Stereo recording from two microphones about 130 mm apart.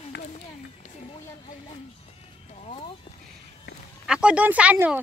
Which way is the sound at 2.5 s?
55° left (ahead or behind).